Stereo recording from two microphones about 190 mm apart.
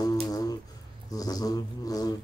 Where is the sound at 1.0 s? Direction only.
20° left (ahead or behind).